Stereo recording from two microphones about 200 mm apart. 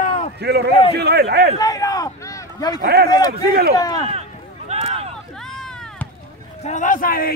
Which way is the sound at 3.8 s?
20° left (ahead or behind).